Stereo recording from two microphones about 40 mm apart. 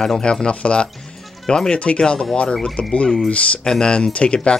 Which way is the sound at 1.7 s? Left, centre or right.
Left.